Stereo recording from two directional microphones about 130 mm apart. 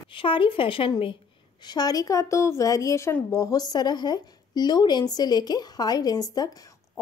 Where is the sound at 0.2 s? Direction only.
40° left (ahead or behind).